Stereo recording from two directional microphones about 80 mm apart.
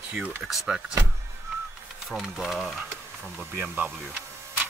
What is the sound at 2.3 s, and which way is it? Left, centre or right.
Speech, centre.